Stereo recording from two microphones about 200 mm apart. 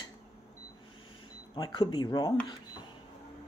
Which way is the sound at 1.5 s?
20° left (ahead or behind).